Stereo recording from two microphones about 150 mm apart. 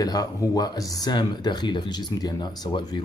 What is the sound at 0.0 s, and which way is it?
Speech, 25° left (ahead or behind).